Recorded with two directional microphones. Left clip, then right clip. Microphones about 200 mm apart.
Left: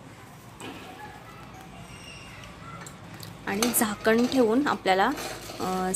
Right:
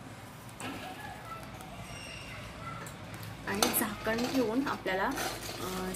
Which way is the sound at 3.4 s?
50° left (ahead or behind).